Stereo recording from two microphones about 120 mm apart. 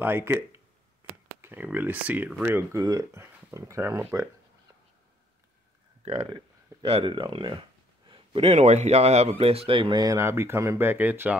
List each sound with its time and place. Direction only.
0.0 s speech: 20° right (ahead or behind)
2.4 s speech: 25° right (ahead or behind)
6.0 s a man's voice: 55° right (ahead or behind); by 10.1 s 40° right (ahead or behind)
10.1 s speech: 20° right (ahead or behind)